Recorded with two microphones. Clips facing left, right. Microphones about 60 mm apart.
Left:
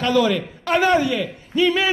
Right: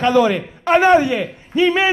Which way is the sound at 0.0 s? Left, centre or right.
Right.